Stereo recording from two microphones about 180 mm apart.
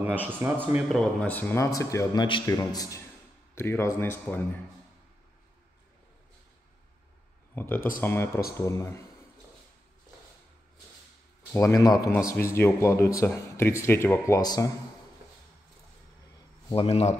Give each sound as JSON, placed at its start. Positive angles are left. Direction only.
{"t": 0.0, "sound": "a man's voice", "side_deg": -10}
{"t": 0.8, "sound": "speech", "side_deg": 5}
{"t": 7.5, "sound": "speech", "side_deg": 10}
{"t": 11.5, "sound": "speech", "side_deg": 15}
{"t": 16.7, "sound": "speech", "side_deg": 35}